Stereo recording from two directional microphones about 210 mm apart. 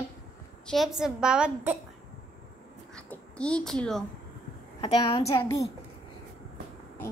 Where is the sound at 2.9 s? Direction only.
5° left (ahead or behind).